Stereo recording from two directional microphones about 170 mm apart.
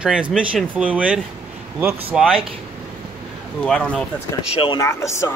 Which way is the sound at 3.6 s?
5° left (ahead or behind).